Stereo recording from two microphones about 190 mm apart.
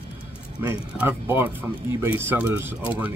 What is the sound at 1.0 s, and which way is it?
Speech, 10° right (ahead or behind).